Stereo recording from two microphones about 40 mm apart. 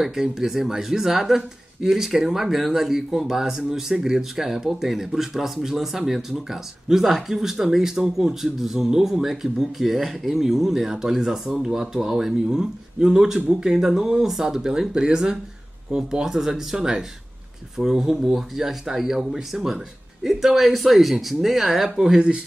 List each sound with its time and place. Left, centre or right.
0.0 s speech: centre
18.1 s speech: centre